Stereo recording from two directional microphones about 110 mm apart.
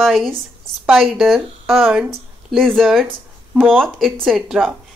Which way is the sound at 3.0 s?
15° right (ahead or behind).